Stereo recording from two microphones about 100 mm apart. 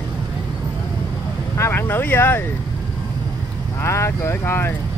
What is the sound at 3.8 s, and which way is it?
Speech, 30° left (ahead or behind).